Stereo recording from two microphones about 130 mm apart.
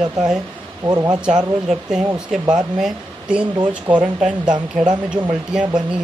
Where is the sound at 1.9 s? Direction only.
5° right (ahead or behind).